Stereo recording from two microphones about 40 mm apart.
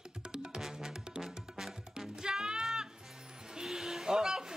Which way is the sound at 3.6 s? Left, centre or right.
Centre.